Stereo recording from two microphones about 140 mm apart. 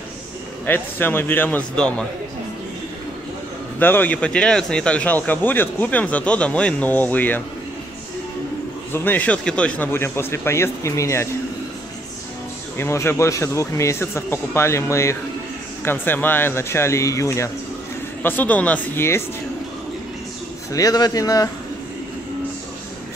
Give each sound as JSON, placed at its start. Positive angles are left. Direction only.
{"t": 0.7, "sound": "speech", "side_deg": 15}
{"t": 3.8, "sound": "speech", "side_deg": 15}
{"t": 8.9, "sound": "speech", "side_deg": 15}
{"t": 12.7, "sound": "speech", "side_deg": 15}
{"t": 20.7, "sound": "speech", "side_deg": 25}